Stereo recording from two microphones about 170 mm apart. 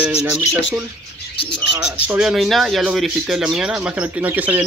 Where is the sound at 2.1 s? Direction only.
5° right (ahead or behind).